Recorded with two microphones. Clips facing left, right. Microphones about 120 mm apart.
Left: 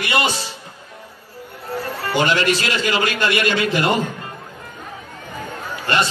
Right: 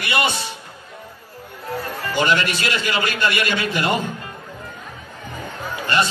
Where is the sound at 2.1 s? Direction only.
45° left (ahead or behind).